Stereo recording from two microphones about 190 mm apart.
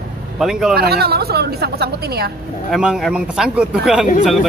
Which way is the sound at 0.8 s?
55° right (ahead or behind).